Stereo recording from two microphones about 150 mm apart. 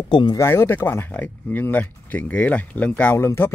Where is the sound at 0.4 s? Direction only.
15° left (ahead or behind).